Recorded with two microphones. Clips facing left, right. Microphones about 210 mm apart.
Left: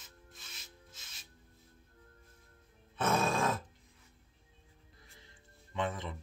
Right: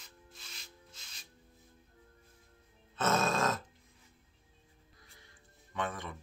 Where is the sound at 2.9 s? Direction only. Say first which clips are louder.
Even; 15° left (ahead or behind).